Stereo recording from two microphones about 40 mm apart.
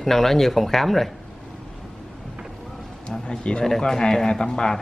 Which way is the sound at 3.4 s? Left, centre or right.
Left.